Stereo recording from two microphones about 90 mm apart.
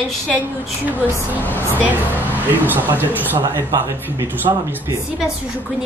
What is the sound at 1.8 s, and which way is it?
A woman's voice, 20° right (ahead or behind).